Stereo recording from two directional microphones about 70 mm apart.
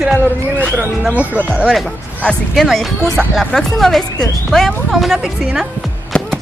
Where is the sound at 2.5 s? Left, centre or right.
Centre.